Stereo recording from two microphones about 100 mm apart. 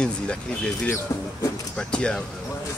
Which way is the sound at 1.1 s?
25° left (ahead or behind).